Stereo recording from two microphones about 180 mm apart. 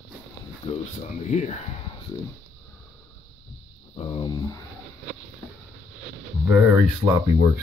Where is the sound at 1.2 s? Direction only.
40° left (ahead or behind).